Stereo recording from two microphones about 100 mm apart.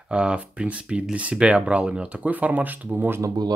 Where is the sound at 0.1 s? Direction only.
10° right (ahead or behind).